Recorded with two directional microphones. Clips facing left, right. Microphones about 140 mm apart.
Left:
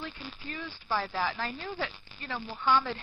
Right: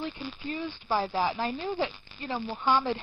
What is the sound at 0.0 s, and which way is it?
Speech, 20° right (ahead or behind).